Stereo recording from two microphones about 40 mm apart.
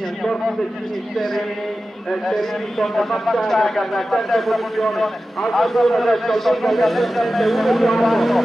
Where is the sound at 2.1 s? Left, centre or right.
Centre.